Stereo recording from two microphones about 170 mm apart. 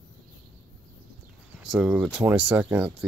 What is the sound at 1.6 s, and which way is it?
Speech, 5° right (ahead or behind).